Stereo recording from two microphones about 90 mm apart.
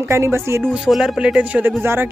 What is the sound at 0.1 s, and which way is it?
Speech, 30° right (ahead or behind).